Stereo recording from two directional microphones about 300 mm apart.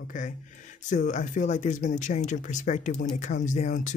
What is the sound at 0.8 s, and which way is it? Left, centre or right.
Speech, left.